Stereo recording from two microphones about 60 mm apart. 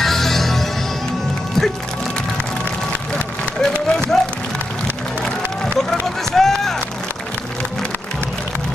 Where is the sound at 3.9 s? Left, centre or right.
Centre.